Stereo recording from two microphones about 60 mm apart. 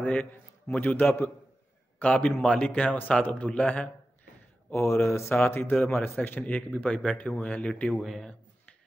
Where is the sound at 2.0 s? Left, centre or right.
Left.